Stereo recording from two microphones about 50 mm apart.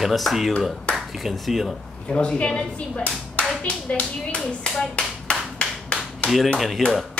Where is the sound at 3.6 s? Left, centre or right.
Left.